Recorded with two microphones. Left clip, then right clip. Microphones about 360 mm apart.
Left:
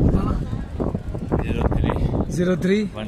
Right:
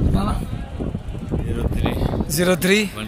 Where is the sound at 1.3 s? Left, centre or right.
Left.